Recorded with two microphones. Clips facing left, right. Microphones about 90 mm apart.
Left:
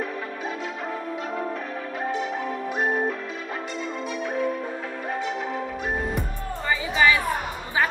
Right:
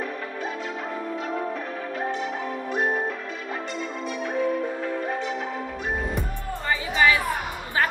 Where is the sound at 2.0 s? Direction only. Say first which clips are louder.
Left 3 dB; centre (ahead or behind).